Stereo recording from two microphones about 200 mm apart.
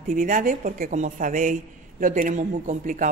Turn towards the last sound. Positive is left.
turn(degrees=-40)  # may be behind; listen again after turning